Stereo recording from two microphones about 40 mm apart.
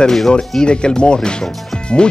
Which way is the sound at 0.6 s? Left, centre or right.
Left.